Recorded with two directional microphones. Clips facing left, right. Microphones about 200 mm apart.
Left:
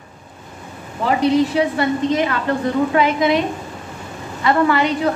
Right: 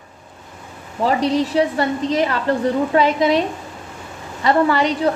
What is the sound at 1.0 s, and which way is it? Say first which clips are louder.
A woman's voice: left 2 dB; 35° right (ahead or behind).